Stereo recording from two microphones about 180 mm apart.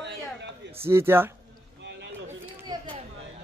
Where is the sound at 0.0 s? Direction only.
75° right (ahead or behind).